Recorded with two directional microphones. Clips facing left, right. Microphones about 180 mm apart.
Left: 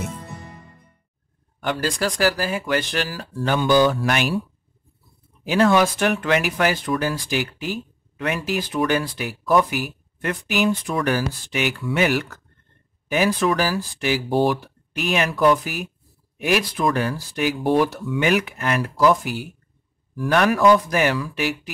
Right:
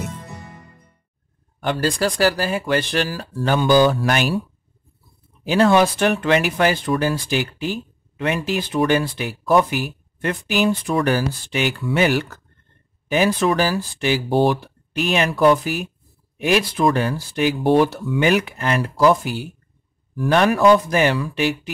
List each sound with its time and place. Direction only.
1.6 s speech: 30° right (ahead or behind)
5.4 s speech: 30° right (ahead or behind)